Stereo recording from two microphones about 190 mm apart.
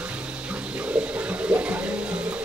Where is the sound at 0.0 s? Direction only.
5° right (ahead or behind).